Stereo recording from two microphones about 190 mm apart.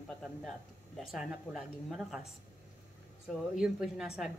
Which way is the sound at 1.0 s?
Centre (ahead or behind).